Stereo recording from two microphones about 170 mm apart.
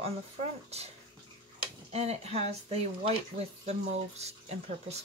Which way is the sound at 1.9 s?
40° right (ahead or behind).